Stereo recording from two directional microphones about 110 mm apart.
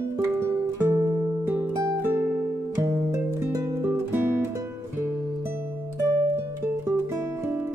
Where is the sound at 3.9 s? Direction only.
20° right (ahead or behind).